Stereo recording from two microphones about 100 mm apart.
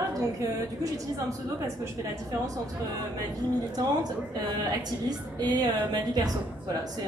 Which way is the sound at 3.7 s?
40° right (ahead or behind).